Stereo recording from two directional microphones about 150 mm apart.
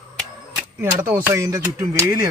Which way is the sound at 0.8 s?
15° right (ahead or behind).